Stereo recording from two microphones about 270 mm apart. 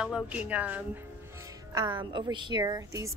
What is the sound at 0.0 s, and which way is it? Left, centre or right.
Speech, centre.